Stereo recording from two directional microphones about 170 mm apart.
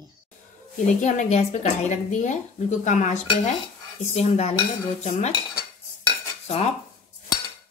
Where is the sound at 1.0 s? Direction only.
40° left (ahead or behind).